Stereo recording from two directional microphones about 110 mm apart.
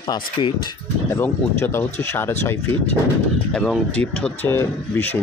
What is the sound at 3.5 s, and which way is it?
Speech, 5° left (ahead or behind).